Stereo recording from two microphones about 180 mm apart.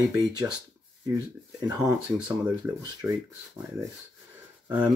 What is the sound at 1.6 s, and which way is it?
Speech, 20° right (ahead or behind).